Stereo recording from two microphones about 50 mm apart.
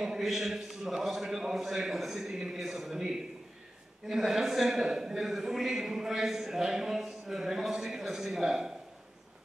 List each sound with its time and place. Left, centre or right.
0.0 s a man's voice: centre